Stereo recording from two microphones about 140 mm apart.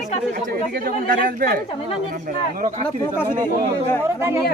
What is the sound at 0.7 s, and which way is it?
Speech, 90° right.